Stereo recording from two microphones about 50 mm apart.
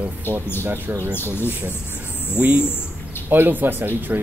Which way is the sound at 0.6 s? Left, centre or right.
Right.